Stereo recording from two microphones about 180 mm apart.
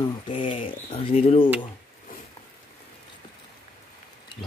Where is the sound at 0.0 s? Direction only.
30° left (ahead or behind).